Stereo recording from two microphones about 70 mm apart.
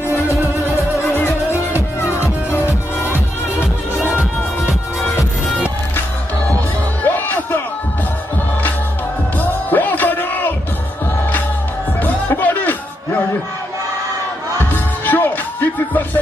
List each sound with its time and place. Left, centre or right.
0.7 s music: left
7.1 s music: left
9.4 s music: left
12.0 s music: left
14.6 s music: left